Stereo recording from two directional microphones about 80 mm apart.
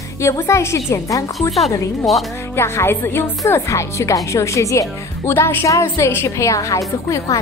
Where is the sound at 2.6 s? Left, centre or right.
Left.